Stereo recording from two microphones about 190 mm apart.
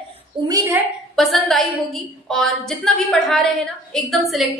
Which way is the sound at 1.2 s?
Centre (ahead or behind).